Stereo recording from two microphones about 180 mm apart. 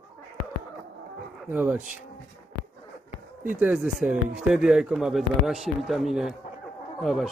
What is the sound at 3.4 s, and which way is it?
Speech, 10° right (ahead or behind).